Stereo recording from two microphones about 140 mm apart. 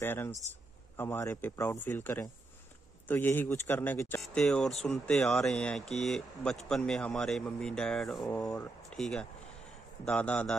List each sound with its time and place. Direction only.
0.0 s a man's voice: 15° left (ahead or behind)
4.2 s a man's voice: 5° left (ahead or behind)